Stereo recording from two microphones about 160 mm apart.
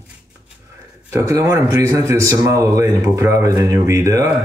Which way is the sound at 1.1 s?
15° right (ahead or behind).